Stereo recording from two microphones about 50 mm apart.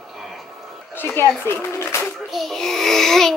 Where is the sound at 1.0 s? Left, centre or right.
Left.